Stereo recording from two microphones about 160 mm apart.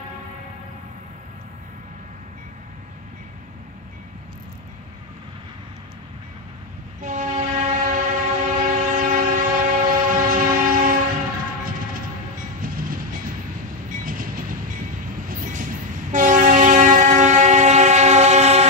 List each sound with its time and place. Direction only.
7.0 s train: 50° right (ahead or behind)
12.6 s train: 60° right (ahead or behind); by 18.7 s 45° right (ahead or behind)